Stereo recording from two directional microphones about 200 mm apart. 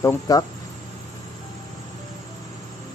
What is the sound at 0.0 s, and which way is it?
Speech, 15° left (ahead or behind).